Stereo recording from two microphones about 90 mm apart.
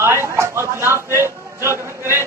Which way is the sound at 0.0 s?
30° right (ahead or behind).